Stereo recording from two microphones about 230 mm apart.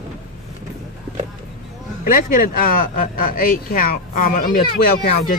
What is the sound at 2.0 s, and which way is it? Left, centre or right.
Speech, left.